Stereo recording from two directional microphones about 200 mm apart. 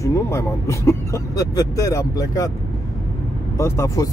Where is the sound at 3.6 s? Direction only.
15° left (ahead or behind).